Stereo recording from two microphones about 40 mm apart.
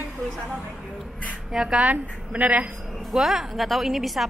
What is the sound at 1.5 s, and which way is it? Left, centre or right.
Speech, centre.